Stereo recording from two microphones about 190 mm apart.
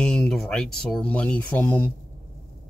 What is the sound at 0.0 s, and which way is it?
Speech, 5° left (ahead or behind).